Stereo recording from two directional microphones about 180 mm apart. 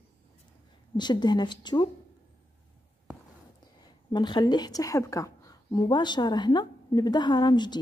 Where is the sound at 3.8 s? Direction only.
25° left (ahead or behind).